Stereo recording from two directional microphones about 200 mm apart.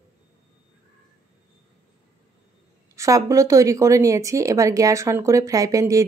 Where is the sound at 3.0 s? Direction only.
15° right (ahead or behind).